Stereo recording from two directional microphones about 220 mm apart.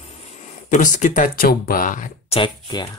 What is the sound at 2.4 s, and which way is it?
Speech, 20° left (ahead or behind).